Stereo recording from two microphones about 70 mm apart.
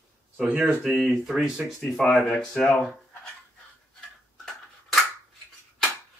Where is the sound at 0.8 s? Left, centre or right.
Centre.